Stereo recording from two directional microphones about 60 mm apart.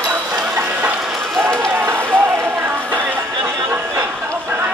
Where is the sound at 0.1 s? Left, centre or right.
Centre.